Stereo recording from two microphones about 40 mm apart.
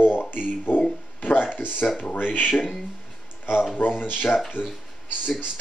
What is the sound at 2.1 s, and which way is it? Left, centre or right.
Speech, left.